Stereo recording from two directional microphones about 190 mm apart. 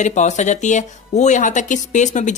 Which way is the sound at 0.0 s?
40° left (ahead or behind).